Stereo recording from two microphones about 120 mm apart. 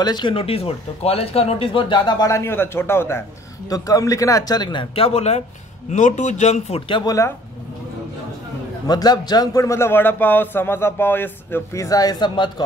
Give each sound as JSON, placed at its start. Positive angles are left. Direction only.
{"t": 0.0, "sound": "speech", "side_deg": 40}
{"t": 4.9, "sound": "speech", "side_deg": 55}
{"t": 5.9, "sound": "speech", "side_deg": 90}
{"t": 6.9, "sound": "speech", "side_deg": 40}
{"t": 8.8, "sound": "a man's voice", "side_deg": 35}